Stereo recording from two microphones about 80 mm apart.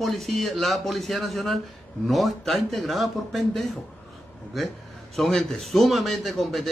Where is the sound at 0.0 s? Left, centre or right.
Centre.